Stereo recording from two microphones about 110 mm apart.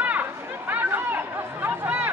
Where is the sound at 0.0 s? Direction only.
15° right (ahead or behind).